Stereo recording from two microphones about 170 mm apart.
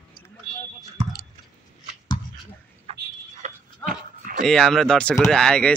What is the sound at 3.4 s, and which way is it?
Dog, 55° right (ahead or behind).